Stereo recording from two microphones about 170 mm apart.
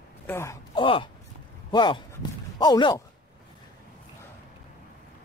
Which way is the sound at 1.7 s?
30° left (ahead or behind).